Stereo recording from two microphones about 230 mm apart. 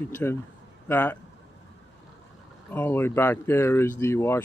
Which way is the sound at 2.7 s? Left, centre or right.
Centre.